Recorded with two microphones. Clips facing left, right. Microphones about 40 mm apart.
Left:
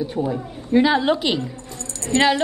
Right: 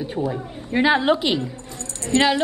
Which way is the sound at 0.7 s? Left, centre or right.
Right.